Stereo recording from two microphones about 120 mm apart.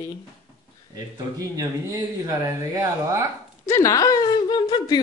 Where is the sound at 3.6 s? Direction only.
25° left (ahead or behind).